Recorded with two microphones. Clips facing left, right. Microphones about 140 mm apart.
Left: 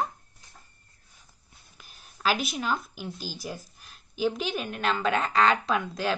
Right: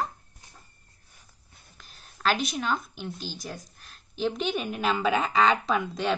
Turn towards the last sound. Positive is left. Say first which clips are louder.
# right 1 dB
turn(degrees=0)  # may be behind; listen again after turning